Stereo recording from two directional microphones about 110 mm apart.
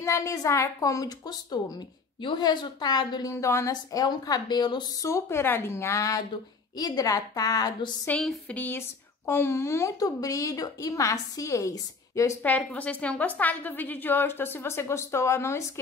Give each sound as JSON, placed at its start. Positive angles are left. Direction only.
{"t": 0.0, "sound": "speech", "side_deg": 30}
{"t": 3.7, "sound": "speech", "side_deg": 40}
{"t": 5.0, "sound": "speech", "side_deg": 25}
{"t": 8.2, "sound": "a sound", "side_deg": 5}
{"t": 8.5, "sound": "speech", "side_deg": 20}
{"t": 12.4, "sound": "a woman's voice", "side_deg": 10}